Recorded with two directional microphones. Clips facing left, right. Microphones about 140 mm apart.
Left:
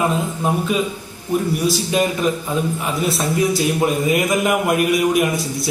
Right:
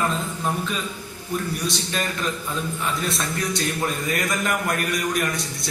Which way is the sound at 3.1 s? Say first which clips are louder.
Left 7 dB; 25° left (ahead or behind).